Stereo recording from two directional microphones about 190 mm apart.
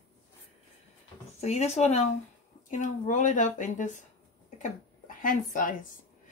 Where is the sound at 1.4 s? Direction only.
35° left (ahead or behind).